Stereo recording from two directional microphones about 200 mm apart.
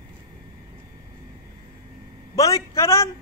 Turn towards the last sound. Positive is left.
turn(degrees=15)  # may be behind; listen again after turning